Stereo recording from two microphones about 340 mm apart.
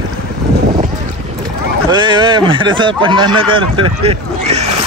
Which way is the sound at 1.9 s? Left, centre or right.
Centre.